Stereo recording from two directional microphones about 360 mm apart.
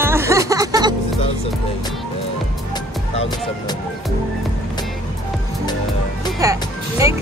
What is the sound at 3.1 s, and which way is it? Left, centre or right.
Speech, centre.